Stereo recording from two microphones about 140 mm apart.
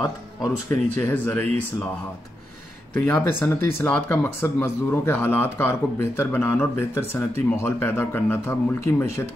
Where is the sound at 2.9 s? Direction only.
10° left (ahead or behind).